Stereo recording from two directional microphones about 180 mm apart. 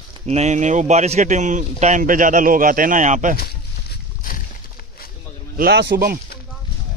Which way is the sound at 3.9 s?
50° left (ahead or behind).